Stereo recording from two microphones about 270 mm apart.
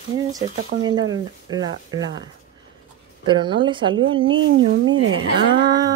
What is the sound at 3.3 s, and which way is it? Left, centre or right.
Speech, centre.